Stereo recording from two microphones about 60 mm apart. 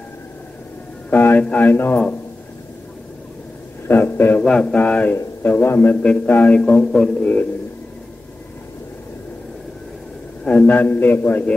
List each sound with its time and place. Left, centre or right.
1.1 s a sound: left
1.4 s speech: left
1.7 s a man's voice: left
3.8 s a man's voice: left
4.4 s mantra: centre
4.7 s a man's voice: left
10.4 s a sound: centre
10.7 s a man's voice: left